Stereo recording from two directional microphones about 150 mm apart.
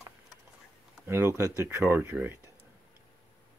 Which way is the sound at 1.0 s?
20° right (ahead or behind).